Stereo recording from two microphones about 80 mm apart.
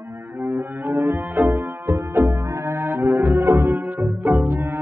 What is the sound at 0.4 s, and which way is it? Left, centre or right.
Music, right.